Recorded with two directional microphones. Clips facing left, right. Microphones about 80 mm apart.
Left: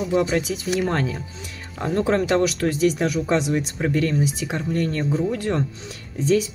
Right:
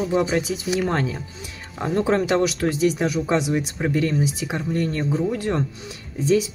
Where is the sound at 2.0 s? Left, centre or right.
Right.